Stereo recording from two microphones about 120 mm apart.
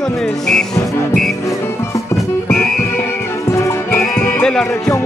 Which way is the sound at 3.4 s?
25° left (ahead or behind).